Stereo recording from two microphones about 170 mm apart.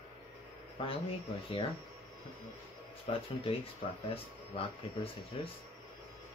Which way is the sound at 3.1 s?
35° left (ahead or behind).